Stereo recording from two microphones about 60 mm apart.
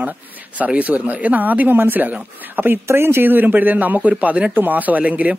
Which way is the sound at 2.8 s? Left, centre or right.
Right.